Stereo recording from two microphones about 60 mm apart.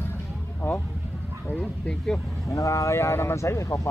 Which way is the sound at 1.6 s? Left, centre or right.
Centre.